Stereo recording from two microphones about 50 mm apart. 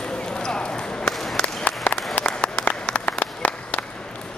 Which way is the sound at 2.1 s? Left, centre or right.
Left.